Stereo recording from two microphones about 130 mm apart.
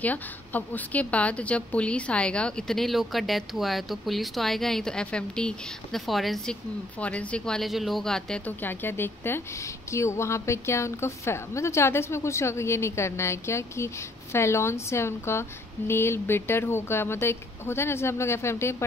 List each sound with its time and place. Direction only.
0.0 s a woman's voice: 15° left (ahead or behind)